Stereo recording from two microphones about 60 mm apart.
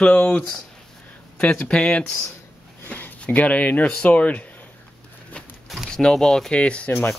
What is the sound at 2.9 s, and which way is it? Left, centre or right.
Speech, left.